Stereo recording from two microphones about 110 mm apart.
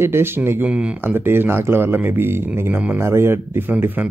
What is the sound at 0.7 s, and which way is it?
Speech, 10° right (ahead or behind).